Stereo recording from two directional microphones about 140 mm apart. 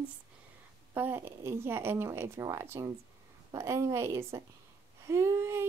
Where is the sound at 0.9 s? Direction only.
15° right (ahead or behind).